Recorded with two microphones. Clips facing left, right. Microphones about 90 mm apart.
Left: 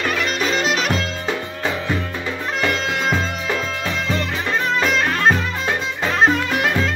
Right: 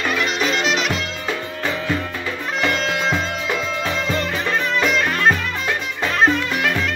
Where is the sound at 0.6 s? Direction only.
40° left (ahead or behind).